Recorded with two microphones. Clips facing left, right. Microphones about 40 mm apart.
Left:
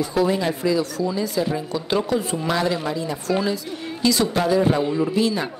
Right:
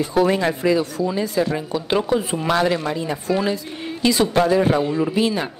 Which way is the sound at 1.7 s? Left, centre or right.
Right.